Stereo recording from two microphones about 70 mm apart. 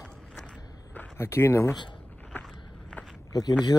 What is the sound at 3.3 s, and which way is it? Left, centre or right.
Speech, left.